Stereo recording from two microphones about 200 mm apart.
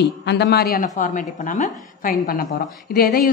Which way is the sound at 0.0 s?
60° left (ahead or behind).